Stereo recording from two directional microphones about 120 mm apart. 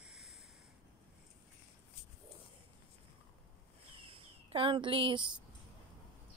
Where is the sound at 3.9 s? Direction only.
50° right (ahead or behind).